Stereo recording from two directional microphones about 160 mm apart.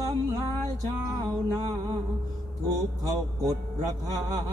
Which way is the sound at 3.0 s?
25° right (ahead or behind).